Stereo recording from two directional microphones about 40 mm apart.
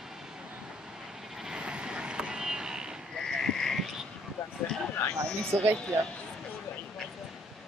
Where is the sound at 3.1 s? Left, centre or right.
Centre.